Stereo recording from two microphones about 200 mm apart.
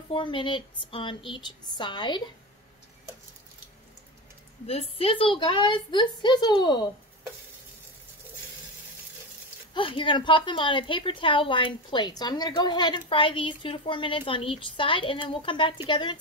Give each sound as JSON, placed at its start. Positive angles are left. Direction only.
{"t": 0.1, "sound": "a woman's voice", "side_deg": 25}
{"t": 4.6, "sound": "a woman's voice", "side_deg": 30}
{"t": 9.8, "sound": "a woman's voice", "side_deg": 25}